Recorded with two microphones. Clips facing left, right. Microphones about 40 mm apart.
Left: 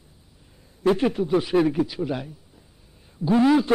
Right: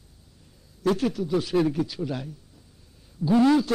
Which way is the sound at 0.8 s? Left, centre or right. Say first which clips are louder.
Left 4 dB; left.